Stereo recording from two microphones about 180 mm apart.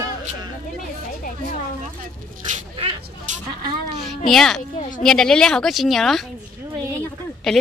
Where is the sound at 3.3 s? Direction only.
40° right (ahead or behind).